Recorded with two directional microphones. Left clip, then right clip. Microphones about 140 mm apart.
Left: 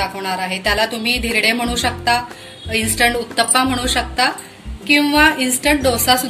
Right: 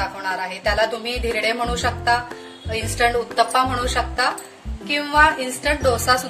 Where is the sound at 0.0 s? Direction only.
50° right (ahead or behind).